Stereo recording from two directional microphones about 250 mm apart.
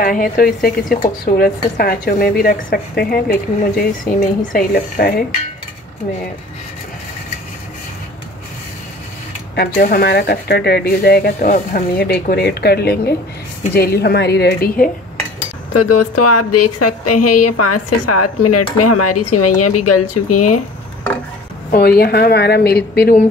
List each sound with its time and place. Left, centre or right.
0.0 s speech: left
9.6 s speech: left
15.7 s a woman's voice: left
21.6 s speech: left